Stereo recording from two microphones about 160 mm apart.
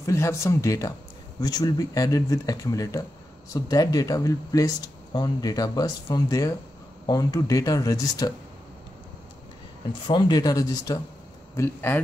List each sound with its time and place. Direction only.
0.0 s speech: 15° left (ahead or behind)
10.0 s speech: 30° left (ahead or behind); by 12.0 s 15° left (ahead or behind)